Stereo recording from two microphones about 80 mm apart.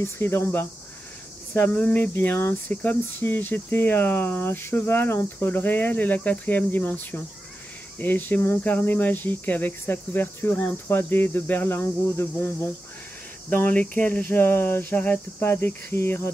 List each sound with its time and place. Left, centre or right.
0.0 s speech: left
1.6 s a sound: centre
2.1 s speech: left